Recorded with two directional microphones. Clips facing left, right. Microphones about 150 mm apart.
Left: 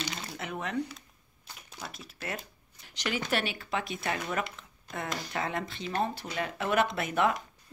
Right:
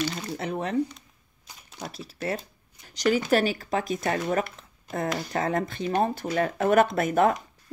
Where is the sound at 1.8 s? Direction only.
35° right (ahead or behind).